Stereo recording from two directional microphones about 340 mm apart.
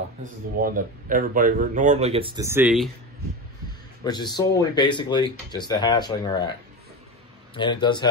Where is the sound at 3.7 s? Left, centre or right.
Centre.